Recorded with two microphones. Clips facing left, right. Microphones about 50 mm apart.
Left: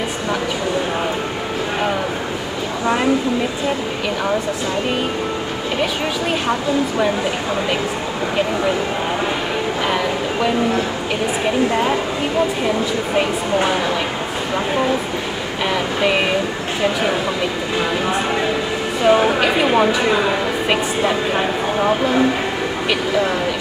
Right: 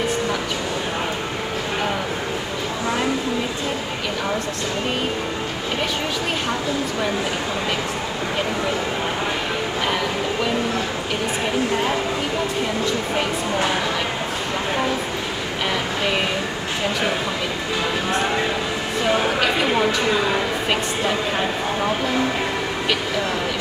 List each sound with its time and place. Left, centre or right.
19.0 s a woman's voice: centre